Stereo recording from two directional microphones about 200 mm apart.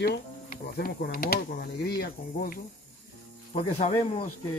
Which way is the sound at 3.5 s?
30° left (ahead or behind).